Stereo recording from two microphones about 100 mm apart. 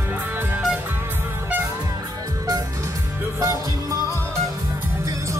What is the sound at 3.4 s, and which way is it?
Music, 30° right (ahead or behind).